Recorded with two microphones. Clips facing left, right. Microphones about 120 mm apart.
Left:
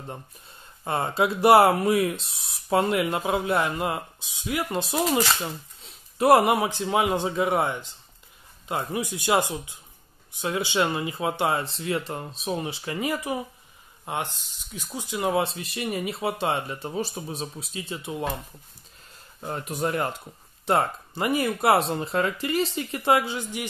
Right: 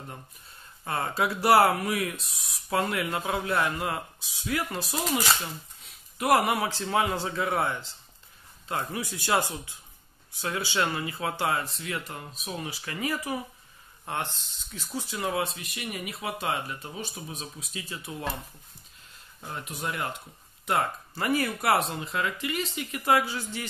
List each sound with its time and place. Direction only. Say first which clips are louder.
0.8 s a man's voice: left 4 dB; 25° left (ahead or behind)
19.4 s speech: left 7 dB; 40° left (ahead or behind)
20.6 s speech: left 4 dB; 25° left (ahead or behind)